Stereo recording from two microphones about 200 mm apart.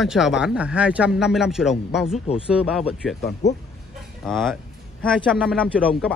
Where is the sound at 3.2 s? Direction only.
60° left (ahead or behind).